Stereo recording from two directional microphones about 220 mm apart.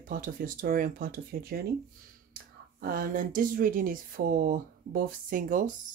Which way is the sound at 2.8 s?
40° right (ahead or behind).